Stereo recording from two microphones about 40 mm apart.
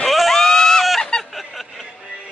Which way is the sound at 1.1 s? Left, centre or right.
Left.